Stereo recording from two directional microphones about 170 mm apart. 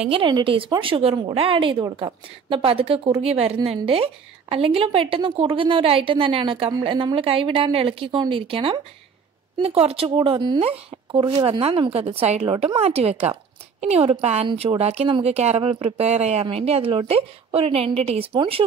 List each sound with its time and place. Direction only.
0.1 s a woman's voice: 30° right (ahead or behind)